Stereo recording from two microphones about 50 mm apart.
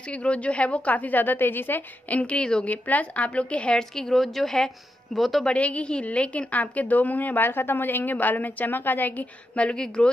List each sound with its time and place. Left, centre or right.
0.1 s a woman's voice: left
2.1 s a woman's voice: left
3.9 s a woman's voice: centre
5.4 s a woman's voice: left
9.6 s a woman's voice: left